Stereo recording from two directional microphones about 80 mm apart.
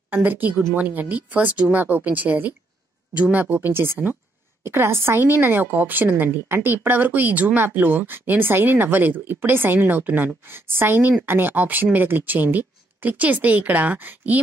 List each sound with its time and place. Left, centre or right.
0.1 s a woman's voice: right